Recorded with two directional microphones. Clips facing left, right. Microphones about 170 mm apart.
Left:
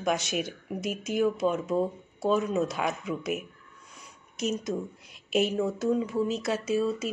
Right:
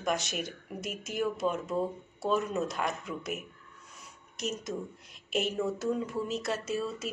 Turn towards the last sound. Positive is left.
turn(degrees=0)  # may be behind; listen again after turning